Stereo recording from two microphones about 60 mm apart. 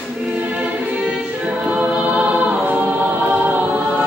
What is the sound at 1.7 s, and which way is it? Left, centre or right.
Choir, right.